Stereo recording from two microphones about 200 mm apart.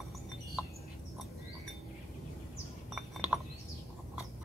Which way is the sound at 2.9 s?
5° right (ahead or behind).